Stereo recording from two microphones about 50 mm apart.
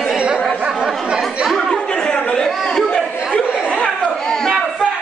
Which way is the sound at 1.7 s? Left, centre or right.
Centre.